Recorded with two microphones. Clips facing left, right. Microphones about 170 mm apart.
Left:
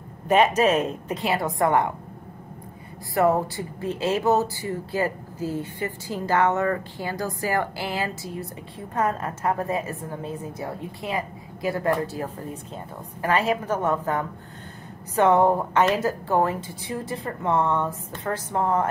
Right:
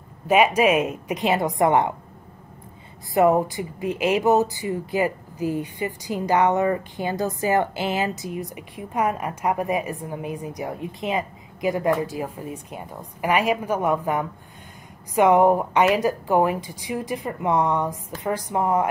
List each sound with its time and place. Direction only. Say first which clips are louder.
0.3 s speech: right 1 dB; 10° right (ahead or behind)
3.2 s speech: right 3 dB; 15° right (ahead or behind)